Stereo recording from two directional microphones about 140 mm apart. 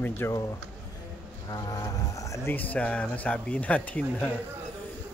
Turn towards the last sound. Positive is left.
turn(degrees=10)  # may be behind; listen again after turning